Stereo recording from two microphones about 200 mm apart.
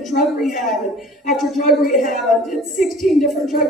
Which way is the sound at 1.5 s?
45° left (ahead or behind).